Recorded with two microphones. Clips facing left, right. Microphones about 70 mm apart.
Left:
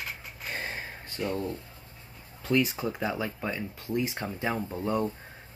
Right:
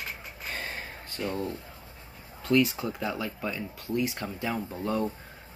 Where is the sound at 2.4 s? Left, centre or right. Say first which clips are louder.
Right 2 dB; centre.